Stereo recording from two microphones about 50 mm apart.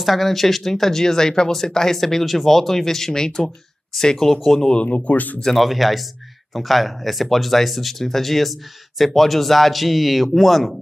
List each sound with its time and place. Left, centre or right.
0.0 s speech: centre
4.8 s speech: left
5.4 s speech: centre